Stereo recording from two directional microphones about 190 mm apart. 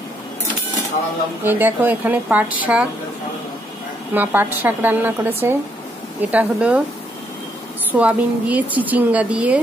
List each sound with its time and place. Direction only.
1.4 s a woman's voice: 10° right (ahead or behind)
4.1 s a woman's voice: 10° right (ahead or behind)
7.9 s a woman's voice: 10° right (ahead or behind)